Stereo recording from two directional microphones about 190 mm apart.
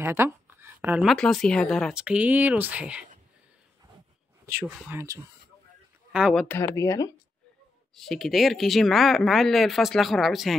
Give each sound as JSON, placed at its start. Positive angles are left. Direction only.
{"t": 0.0, "sound": "a sound", "side_deg": -15}
{"t": 1.1, "sound": "speech", "side_deg": 5}
{"t": 4.6, "sound": "speech", "side_deg": 0}
{"t": 4.9, "sound": "speech", "side_deg": -20}
{"t": 6.1, "sound": "speech", "side_deg": -5}
{"t": 6.4, "sound": "speech", "side_deg": 15}
{"t": 7.9, "sound": "speech", "side_deg": 0}